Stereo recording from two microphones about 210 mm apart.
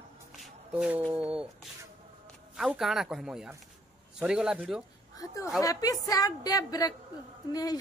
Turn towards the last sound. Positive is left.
turn(degrees=20)  # may be behind; listen again after turning